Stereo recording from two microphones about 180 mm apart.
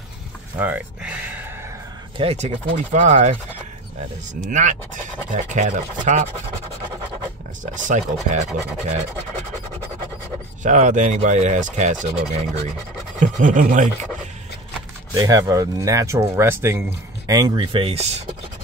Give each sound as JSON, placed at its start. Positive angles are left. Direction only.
{"t": 0.6, "sound": "speech", "side_deg": -10}
{"t": 2.1, "sound": "speech", "side_deg": -35}
{"t": 4.4, "sound": "speech", "side_deg": -40}
{"t": 7.6, "sound": "speech", "side_deg": -45}
{"t": 10.6, "sound": "speech", "side_deg": -45}
{"t": 15.1, "sound": "speech", "side_deg": -20}